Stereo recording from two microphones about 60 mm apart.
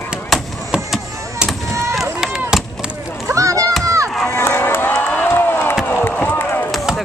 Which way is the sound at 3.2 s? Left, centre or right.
Right.